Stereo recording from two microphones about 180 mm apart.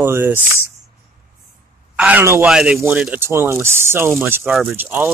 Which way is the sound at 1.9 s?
10° right (ahead or behind).